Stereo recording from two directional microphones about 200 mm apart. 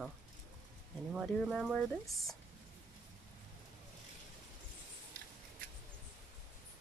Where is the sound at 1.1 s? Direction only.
Centre (ahead or behind).